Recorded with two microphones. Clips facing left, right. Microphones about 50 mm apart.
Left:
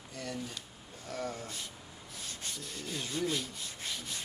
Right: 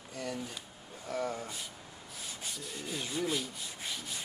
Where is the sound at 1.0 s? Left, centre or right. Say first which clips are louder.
Right 3 dB; centre.